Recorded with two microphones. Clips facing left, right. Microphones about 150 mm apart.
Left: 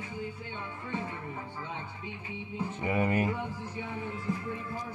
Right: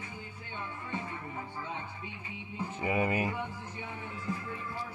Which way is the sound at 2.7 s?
5° right (ahead or behind).